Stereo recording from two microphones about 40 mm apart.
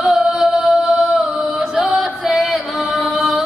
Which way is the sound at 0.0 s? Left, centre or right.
Right.